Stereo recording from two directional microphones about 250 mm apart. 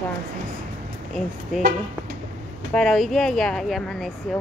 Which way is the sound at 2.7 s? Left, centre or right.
Centre.